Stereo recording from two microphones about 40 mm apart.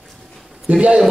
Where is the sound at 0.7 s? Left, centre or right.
Right.